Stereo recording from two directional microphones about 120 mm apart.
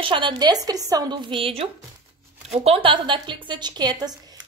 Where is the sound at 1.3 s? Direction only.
50° right (ahead or behind).